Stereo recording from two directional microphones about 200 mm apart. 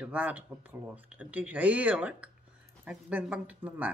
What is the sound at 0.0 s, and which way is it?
Speech, 5° right (ahead or behind).